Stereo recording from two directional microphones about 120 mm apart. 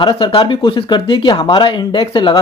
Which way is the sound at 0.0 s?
40° left (ahead or behind).